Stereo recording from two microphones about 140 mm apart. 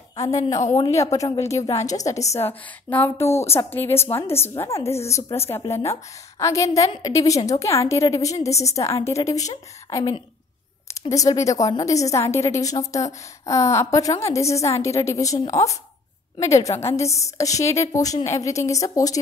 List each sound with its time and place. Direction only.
0.1 s a woman's voice: 25° left (ahead or behind)
8.4 s a woman's voice: 50° left (ahead or behind)
8.6 s a woman's voice: 20° left (ahead or behind)